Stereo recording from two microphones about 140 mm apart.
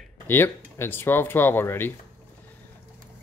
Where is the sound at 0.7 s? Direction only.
15° left (ahead or behind).